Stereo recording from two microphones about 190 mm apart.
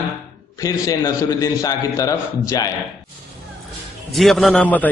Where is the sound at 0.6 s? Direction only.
20° left (ahead or behind).